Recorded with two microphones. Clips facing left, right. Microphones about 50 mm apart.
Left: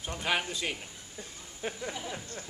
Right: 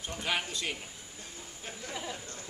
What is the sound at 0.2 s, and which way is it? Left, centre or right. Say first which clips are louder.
Speech: left 2 dB; centre.